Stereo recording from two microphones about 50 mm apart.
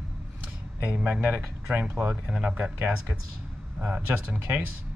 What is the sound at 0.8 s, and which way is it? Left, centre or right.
A man's voice, right.